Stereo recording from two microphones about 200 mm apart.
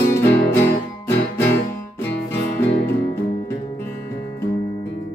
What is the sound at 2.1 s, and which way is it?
Music, 55° left (ahead or behind).